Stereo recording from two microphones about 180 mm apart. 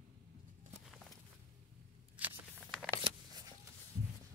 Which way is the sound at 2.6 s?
Centre (ahead or behind).